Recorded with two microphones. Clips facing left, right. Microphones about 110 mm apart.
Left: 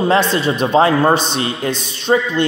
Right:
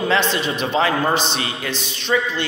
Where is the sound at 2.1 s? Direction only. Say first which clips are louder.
Left 5 dB; 45° left (ahead or behind).